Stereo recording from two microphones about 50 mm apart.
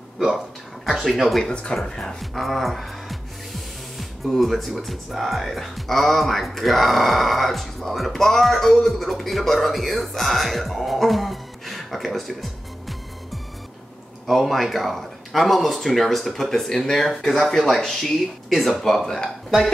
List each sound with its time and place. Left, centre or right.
1.0 s speech: centre
1.5 s speech: left